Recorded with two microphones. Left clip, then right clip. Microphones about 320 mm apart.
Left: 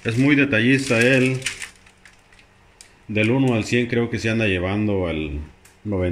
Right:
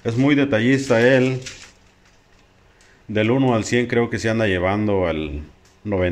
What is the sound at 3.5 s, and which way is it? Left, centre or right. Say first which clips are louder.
Speech: right 2 dB; right.